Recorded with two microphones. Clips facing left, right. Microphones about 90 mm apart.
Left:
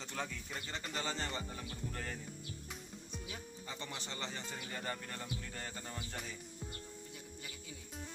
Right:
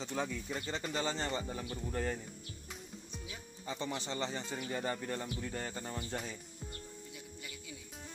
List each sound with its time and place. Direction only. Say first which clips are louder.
0.0 s speech: right 5 dB; 15° right (ahead or behind)
3.6 s speech: right 9 dB; 20° right (ahead or behind)